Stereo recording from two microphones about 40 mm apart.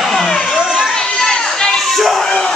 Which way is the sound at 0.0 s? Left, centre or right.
Centre.